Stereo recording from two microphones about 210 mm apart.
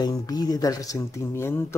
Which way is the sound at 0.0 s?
20° left (ahead or behind).